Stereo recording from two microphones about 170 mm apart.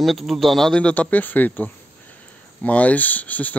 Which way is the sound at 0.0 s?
Centre (ahead or behind).